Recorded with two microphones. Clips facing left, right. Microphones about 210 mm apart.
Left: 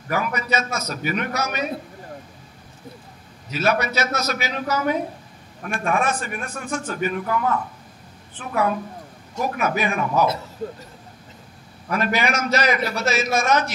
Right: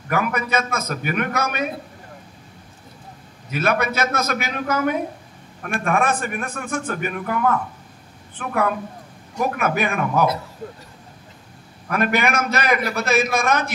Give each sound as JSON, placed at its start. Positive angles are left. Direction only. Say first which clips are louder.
{"t": 0.1, "sound": "a man's voice", "louder": "right 2 dB", "side_deg": -55}
{"t": 3.4, "sound": "a man's voice", "louder": "right 1 dB", "side_deg": -55}
{"t": 8.4, "sound": "a man's voice", "louder": "even", "side_deg": -55}
{"t": 11.9, "sound": "a man's voice", "louder": "right 2 dB", "side_deg": -55}